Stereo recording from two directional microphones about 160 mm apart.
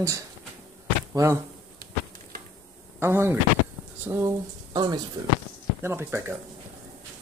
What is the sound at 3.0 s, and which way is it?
Speech, 15° right (ahead or behind).